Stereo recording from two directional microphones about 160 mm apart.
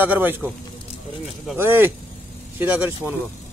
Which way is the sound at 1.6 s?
15° right (ahead or behind).